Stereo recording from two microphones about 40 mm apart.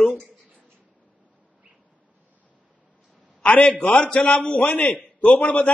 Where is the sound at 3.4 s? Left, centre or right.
Left.